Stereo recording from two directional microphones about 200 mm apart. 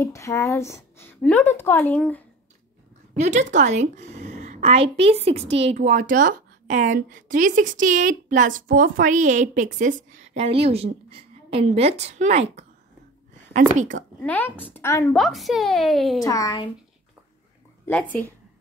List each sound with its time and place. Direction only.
0.0 s a woman's voice: 15° left (ahead or behind)
3.2 s a woman's voice: 35° right (ahead or behind)
14.2 s a woman's voice: 10° left (ahead or behind)
15.1 s a woman's voice: centre (ahead or behind)
16.2 s a woman's voice: 15° left (ahead or behind)
17.8 s a woman's voice: 5° left (ahead or behind)